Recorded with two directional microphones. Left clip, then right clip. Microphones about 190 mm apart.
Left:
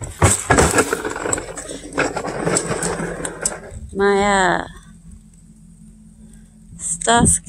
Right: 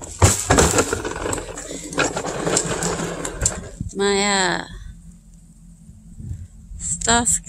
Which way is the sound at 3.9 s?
5° left (ahead or behind).